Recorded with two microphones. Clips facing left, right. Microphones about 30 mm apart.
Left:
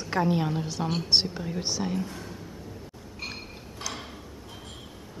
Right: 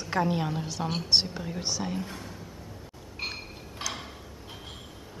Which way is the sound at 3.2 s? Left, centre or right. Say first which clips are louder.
Right 2 dB; centre.